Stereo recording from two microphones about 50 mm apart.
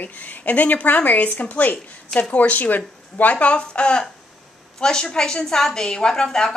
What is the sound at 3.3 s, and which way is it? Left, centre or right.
A woman's voice, left.